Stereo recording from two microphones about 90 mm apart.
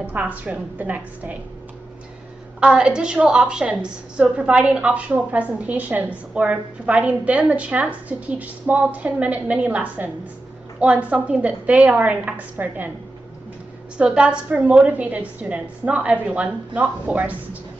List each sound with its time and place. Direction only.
0.0 s a woman's voice: 15° right (ahead or behind)
2.6 s a woman's voice: 10° right (ahead or behind)
13.9 s a woman's voice: 10° right (ahead or behind)